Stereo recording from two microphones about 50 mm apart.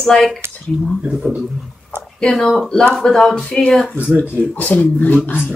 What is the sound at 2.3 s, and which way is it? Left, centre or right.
Speech, centre.